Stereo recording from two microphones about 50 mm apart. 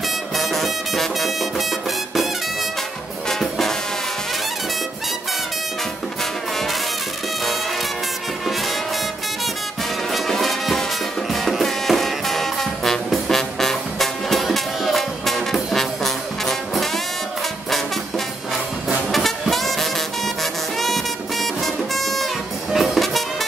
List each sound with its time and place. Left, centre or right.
0.4 s music: centre
3.3 s music: centre
10.4 s music: centre
19.1 s music: centre